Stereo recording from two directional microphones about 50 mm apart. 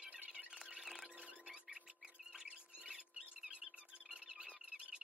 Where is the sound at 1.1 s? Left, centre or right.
Right.